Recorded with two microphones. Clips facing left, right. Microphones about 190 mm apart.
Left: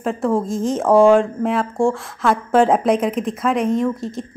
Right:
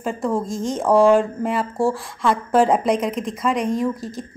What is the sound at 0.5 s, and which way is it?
Speech, 30° left (ahead or behind).